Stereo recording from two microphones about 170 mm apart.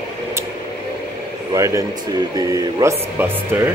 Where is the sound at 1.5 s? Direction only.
20° right (ahead or behind).